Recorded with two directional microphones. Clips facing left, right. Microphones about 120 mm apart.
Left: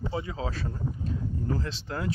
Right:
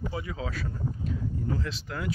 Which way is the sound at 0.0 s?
25° left (ahead or behind).